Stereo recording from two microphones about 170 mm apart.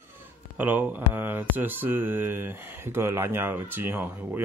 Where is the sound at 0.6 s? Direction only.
10° right (ahead or behind).